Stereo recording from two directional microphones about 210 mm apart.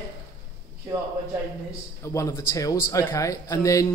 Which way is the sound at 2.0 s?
15° left (ahead or behind).